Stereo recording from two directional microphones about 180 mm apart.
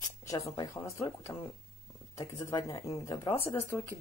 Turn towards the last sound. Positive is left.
turn(degrees=15)  # may be behind; listen again after turning